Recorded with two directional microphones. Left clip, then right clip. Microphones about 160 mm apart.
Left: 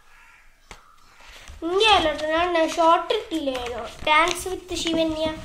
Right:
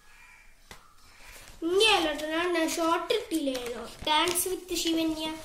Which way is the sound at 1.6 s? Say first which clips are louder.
Left 5 dB; 35° right (ahead or behind).